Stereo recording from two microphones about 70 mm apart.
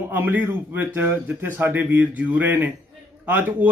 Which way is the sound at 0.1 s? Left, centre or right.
Right.